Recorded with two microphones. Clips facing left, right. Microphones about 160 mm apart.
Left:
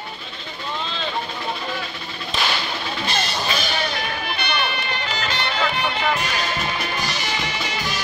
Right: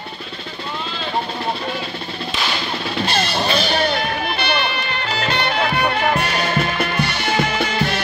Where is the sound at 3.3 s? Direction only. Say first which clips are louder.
Right 6 dB; 60° right (ahead or behind).